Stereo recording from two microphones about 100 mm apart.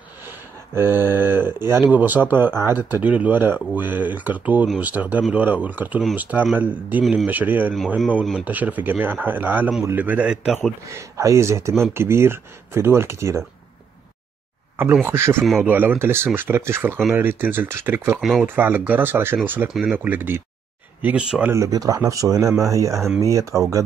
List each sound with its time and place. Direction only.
0.7 s speech: 25° right (ahead or behind)
8.1 s speech: 5° right (ahead or behind)
10.9 s speech: 30° right (ahead or behind)
15.0 s speech: 25° right (ahead or behind)
21.0 s speech: 10° right (ahead or behind)
21.5 s speech: 35° right (ahead or behind)